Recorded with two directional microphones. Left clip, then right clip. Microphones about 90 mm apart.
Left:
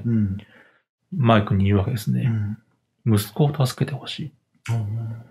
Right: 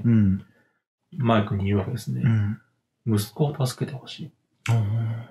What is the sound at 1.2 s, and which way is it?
Speech, 35° left (ahead or behind).